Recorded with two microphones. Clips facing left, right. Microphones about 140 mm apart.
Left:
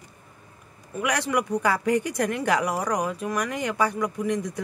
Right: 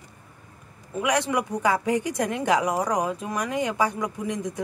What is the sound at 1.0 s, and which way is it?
Speech, 20° right (ahead or behind).